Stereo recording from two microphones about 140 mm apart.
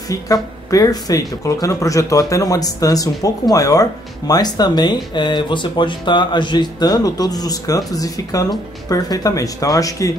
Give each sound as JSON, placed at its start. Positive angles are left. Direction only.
{"t": 0.1, "sound": "speech", "side_deg": 25}